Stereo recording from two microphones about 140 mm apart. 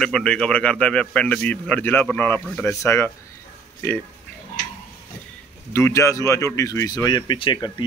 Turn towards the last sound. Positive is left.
turn(degrees=35)  # may be behind; listen again after turning